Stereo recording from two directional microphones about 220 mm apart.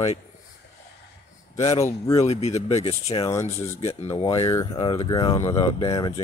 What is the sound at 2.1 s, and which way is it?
Speech, 30° left (ahead or behind).